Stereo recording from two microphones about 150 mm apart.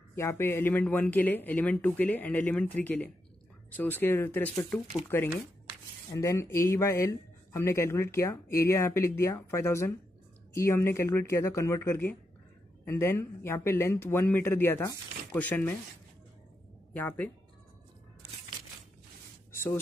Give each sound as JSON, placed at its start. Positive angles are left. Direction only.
{"t": 0.1, "sound": "speech", "side_deg": 15}
{"t": 16.9, "sound": "speech", "side_deg": 10}
{"t": 19.5, "sound": "a sound", "side_deg": 15}